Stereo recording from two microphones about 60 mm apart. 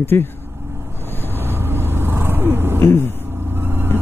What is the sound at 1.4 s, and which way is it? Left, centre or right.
Vehicle, right.